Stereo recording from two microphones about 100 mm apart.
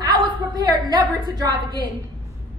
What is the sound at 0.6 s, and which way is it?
A woman's voice, 40° right (ahead or behind).